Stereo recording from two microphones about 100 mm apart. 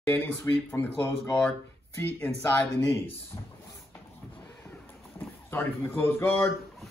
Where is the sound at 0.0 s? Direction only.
20° left (ahead or behind).